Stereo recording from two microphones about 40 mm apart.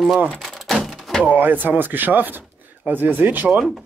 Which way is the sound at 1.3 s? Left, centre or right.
Right.